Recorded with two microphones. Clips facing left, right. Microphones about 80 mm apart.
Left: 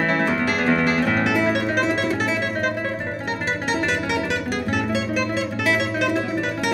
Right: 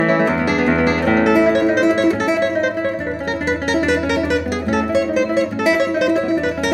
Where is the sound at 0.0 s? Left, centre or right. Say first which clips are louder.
Right 5 dB; centre.